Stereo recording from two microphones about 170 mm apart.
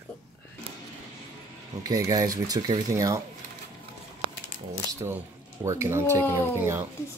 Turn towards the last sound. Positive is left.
turn(degrees=-10)  # may be behind; listen again after turning